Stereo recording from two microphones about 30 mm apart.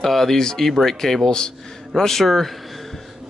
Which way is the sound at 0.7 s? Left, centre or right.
Centre.